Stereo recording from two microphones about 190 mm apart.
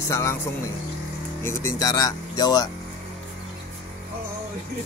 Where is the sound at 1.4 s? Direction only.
15° left (ahead or behind).